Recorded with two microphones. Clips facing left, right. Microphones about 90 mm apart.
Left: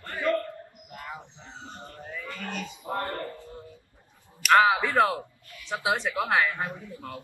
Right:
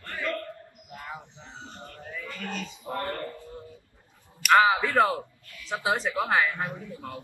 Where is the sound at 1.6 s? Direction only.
20° left (ahead or behind).